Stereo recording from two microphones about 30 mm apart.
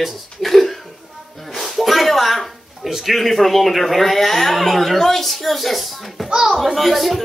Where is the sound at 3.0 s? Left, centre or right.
Centre.